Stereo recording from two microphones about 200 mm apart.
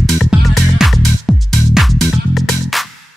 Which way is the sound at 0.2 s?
Centre (ahead or behind).